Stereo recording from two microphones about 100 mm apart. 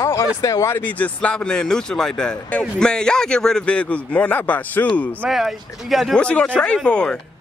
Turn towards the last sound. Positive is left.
turn(degrees=10)  # may be behind; listen again after turning